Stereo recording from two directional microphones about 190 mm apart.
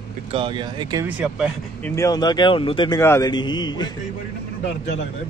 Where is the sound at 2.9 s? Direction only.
15° left (ahead or behind).